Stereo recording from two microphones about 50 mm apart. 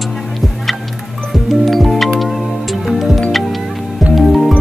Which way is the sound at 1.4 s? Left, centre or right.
Centre.